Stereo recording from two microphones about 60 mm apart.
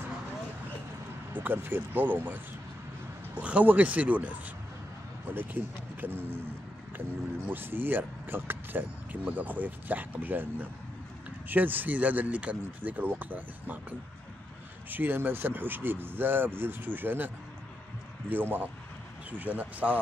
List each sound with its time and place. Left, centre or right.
1.3 s speech: right
5.3 s speech: right
18.3 s speech: right